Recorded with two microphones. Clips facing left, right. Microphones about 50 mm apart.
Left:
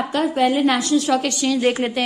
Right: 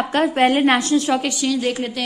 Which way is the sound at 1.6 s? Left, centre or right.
Left.